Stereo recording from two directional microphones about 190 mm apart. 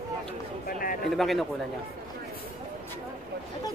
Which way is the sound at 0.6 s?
50° left (ahead or behind).